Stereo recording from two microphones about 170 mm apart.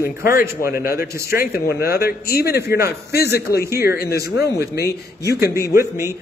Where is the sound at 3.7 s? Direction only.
65° left (ahead or behind).